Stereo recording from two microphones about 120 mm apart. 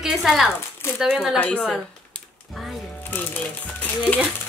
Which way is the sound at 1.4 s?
10° left (ahead or behind).